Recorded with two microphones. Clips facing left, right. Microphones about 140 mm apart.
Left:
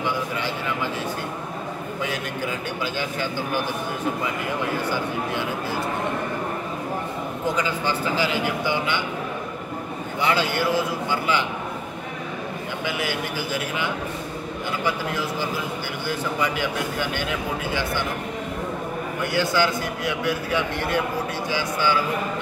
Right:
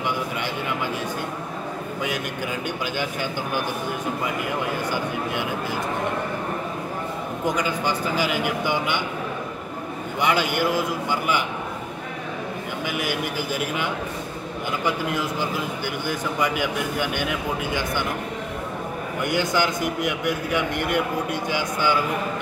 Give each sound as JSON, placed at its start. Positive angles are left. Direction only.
{"t": 7.4, "sound": "a man's voice", "side_deg": -15}
{"t": 10.2, "sound": "a man's voice", "side_deg": -15}
{"t": 19.2, "sound": "a man's voice", "side_deg": -15}